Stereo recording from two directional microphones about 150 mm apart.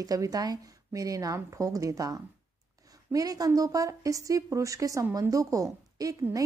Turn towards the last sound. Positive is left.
turn(degrees=-25)  # may be behind; listen again after turning